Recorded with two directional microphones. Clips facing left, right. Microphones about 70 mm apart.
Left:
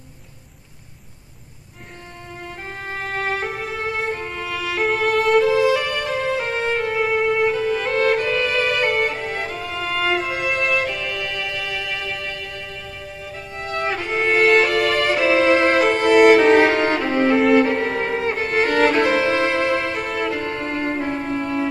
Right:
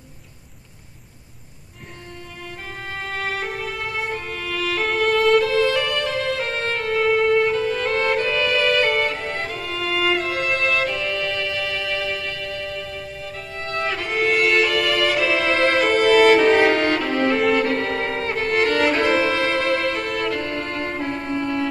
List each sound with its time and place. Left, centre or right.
2.9 s music: left; by 12.4 s centre
13.6 s music: left
17.6 s violin: centre